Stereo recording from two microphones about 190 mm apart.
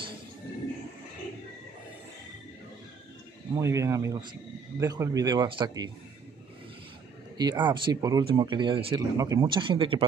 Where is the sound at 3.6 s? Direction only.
15° right (ahead or behind).